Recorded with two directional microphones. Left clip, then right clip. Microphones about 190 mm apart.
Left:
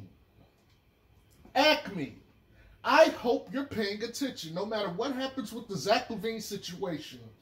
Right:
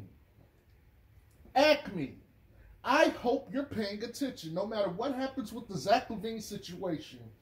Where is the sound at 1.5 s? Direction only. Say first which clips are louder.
Left 1 dB; 10° left (ahead or behind).